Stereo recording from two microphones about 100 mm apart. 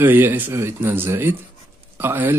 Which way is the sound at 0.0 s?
20° right (ahead or behind).